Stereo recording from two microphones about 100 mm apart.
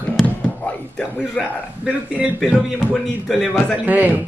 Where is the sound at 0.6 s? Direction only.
15° left (ahead or behind).